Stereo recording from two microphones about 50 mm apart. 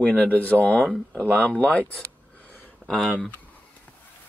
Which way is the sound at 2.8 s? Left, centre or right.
Centre.